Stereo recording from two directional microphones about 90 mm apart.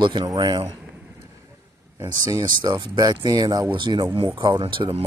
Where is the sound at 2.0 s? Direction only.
50° right (ahead or behind).